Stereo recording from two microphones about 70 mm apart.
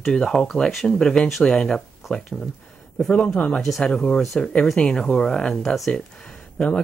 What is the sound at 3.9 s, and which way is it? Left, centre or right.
Speech, centre.